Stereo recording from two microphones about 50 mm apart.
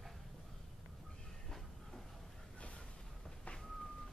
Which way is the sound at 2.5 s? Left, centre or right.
Left.